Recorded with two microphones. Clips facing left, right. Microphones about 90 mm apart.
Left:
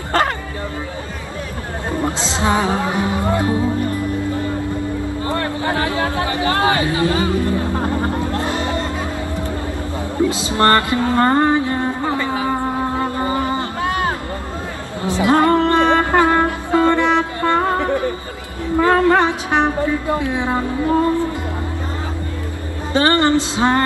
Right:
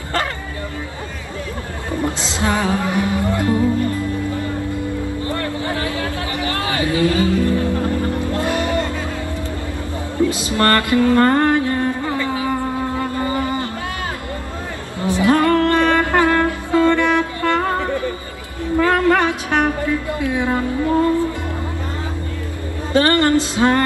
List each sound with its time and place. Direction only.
1.9 s speech: 25° left (ahead or behind)
5.2 s a sound: 30° left (ahead or behind)
10.3 s a sound: 25° left (ahead or behind)
15.0 s music: 20° left (ahead or behind)
18.8 s speech: 25° left (ahead or behind)
22.9 s speech: 25° left (ahead or behind)